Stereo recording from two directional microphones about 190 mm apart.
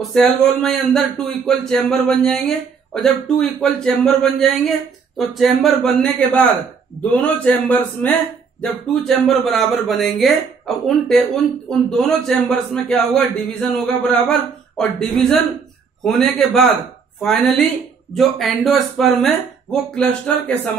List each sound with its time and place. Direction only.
0.0 s a man's voice: 5° left (ahead or behind)
11.9 s speech: centre (ahead or behind)